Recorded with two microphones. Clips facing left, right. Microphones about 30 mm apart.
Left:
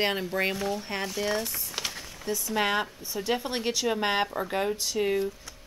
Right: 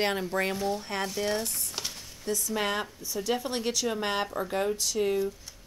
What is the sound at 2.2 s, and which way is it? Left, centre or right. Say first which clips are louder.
Speech: left 2 dB; centre.